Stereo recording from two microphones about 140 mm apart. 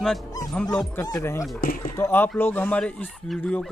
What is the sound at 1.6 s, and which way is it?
Speech, 90° left.